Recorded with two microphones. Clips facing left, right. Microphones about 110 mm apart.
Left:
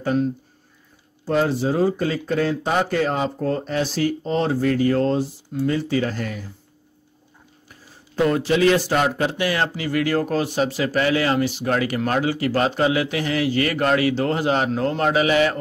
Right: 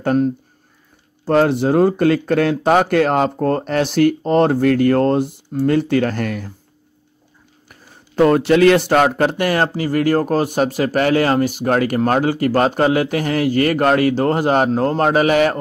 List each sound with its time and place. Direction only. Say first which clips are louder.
0.0 s speech: right 5 dB; 55° right (ahead or behind)
1.2 s speech: right 6 dB; 65° right (ahead or behind)
7.6 s speech: right 3 dB; 60° right (ahead or behind)